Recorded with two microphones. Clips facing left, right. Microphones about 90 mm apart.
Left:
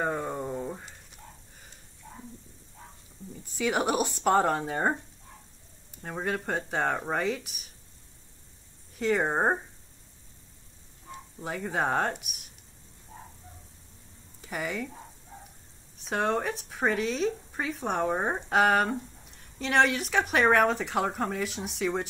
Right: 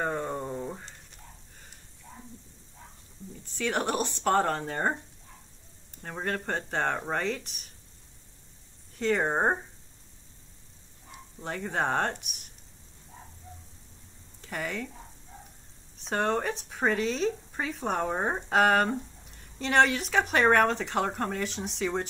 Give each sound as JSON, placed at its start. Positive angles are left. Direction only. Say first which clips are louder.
{"t": 0.0, "sound": "a sound", "louder": "left 1 dB", "side_deg": 5}
{"t": 3.5, "sound": "speech", "louder": "left 2 dB", "side_deg": 10}
{"t": 6.0, "sound": "speech", "louder": "left 1 dB", "side_deg": 5}
{"t": 8.9, "sound": "speech", "louder": "even", "side_deg": 5}
{"t": 11.3, "sound": "speech", "louder": "even", "side_deg": 5}
{"t": 14.4, "sound": "speech", "louder": "left 1 dB", "side_deg": 5}
{"t": 16.0, "sound": "speech", "louder": "even", "side_deg": 0}